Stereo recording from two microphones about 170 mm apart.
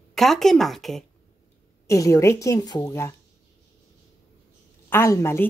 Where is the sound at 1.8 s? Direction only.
20° left (ahead or behind).